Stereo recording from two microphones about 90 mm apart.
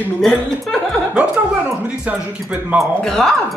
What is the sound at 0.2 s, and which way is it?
Speech, 5° left (ahead or behind).